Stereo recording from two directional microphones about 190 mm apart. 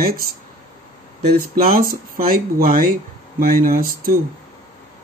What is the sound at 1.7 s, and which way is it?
Speech, 50° right (ahead or behind).